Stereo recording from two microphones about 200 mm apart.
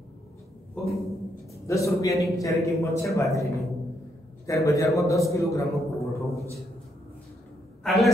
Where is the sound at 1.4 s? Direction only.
15° left (ahead or behind).